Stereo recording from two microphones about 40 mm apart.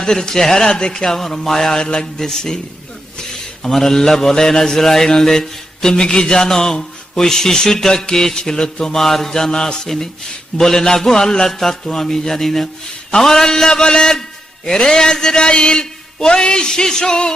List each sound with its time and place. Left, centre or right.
0.0 s a man's voice: centre
1.0 s a man's voice: centre
3.2 s a sound: centre
3.7 s a man's voice: centre
8.9 s a man's voice: centre